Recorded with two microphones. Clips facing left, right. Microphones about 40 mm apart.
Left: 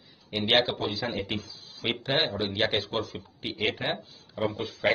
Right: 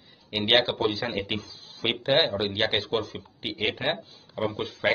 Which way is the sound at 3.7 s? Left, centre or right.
Right.